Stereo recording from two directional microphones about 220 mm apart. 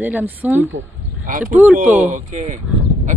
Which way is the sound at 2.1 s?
35° right (ahead or behind).